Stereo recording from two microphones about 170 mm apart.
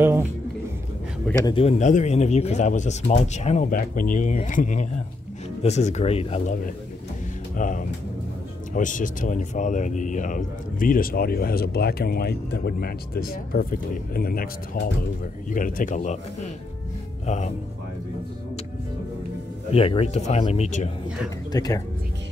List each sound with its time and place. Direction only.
0.0 s music: 15° right (ahead or behind)
1.5 s speech: 35° left (ahead or behind)
3.7 s speech: 55° left (ahead or behind); by 6.5 s 35° left (ahead or behind)
7.5 s speech: 50° left (ahead or behind)
19.7 s speech: 35° left (ahead or behind)
21.5 s speech: 20° left (ahead or behind)